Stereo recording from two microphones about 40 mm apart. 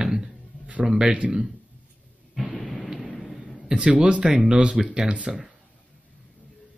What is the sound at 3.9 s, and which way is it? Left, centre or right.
Speech, right.